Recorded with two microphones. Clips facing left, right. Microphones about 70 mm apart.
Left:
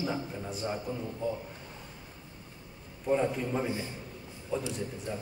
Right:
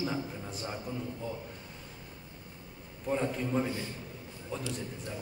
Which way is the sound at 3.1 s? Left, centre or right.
Centre.